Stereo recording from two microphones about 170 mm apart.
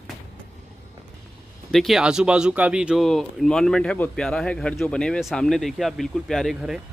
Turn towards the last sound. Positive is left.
turn(degrees=-5)  # may be behind; listen again after turning